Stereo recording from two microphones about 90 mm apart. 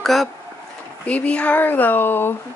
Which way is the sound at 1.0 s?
15° left (ahead or behind).